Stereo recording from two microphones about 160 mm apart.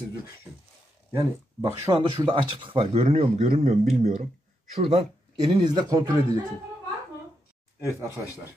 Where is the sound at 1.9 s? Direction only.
15° right (ahead or behind).